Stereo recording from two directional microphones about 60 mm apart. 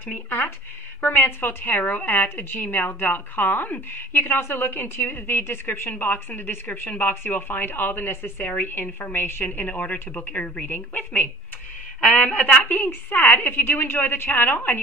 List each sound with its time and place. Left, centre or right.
1.0 s a woman's voice: left
4.4 s a woman's voice: left